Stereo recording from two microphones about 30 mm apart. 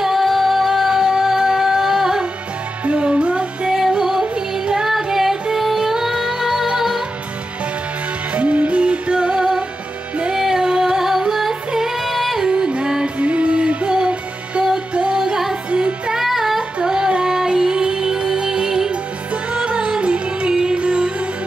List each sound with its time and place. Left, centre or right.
0.0 s music: centre
2.8 s music: right
4.0 s yodeling: centre
4.8 s music: centre
8.4 s music: right; by 12.4 s centre
12.4 s music: right
13.2 s music: right
15.0 s music: right
16.2 s music: centre
19.5 s music: right